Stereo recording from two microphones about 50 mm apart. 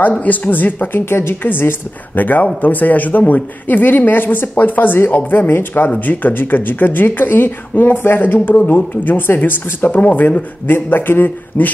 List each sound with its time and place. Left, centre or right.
0.2 s speech: left
10.7 s a man's voice: left